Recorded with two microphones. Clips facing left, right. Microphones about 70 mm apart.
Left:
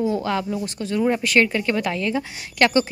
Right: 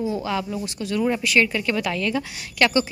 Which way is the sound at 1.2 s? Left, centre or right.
Left.